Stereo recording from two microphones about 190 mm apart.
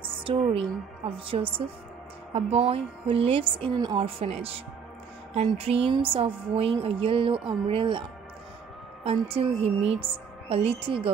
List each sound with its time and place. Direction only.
0.0 s a woman's voice: 30° right (ahead or behind)
9.0 s speech: 30° right (ahead or behind)